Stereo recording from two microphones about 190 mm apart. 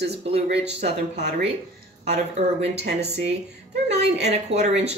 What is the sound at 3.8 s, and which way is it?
Speech, 35° right (ahead or behind).